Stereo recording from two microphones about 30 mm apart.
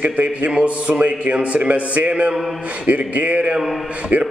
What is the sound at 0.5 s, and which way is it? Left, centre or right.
A man's voice, right.